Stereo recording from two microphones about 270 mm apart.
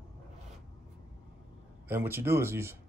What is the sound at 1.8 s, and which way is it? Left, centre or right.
Speech, centre.